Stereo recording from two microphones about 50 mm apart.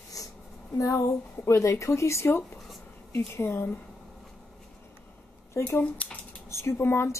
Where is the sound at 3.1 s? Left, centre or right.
Left.